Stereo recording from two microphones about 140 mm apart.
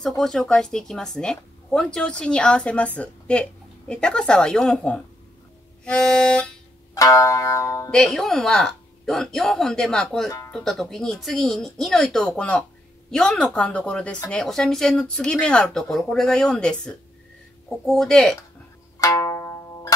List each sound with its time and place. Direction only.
0.2 s speech: 5° left (ahead or behind)
7.0 s music: 25° left (ahead or behind)
7.9 s speech: centre (ahead or behind)
18.9 s music: 25° left (ahead or behind)